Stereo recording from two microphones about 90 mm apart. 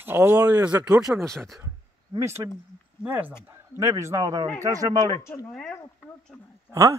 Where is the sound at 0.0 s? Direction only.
25° right (ahead or behind).